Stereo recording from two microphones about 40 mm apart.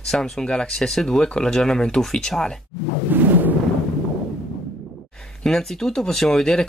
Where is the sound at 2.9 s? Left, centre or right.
Right.